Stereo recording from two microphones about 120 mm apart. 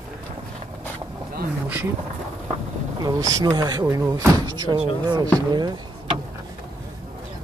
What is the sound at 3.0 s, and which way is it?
Speech, 30° right (ahead or behind).